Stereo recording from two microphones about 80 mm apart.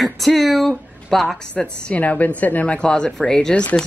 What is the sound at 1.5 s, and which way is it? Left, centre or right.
Speech, centre.